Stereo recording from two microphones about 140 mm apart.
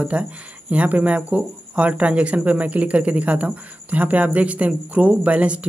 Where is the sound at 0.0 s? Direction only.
10° right (ahead or behind).